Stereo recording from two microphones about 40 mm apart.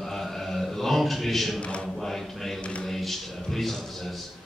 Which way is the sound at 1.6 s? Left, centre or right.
Left.